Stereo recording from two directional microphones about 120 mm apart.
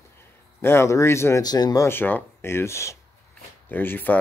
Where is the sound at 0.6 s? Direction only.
20° left (ahead or behind).